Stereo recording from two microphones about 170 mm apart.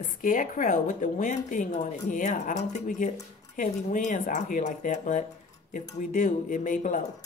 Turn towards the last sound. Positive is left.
turn(degrees=50)  # may be behind; listen again after turning